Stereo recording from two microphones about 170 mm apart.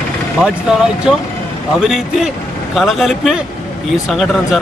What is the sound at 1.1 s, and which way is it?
Speech, 5° right (ahead or behind).